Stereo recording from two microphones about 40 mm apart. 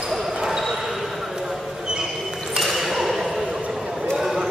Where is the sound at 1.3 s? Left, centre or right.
Centre.